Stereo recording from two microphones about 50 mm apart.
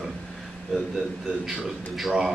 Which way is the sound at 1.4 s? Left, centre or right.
Centre.